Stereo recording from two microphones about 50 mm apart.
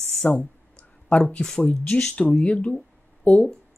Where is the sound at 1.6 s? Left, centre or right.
Left.